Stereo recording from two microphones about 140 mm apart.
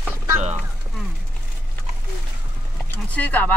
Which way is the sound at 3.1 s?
10° left (ahead or behind).